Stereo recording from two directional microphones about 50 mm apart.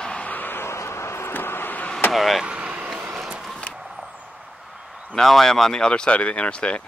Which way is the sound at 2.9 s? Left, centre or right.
Centre.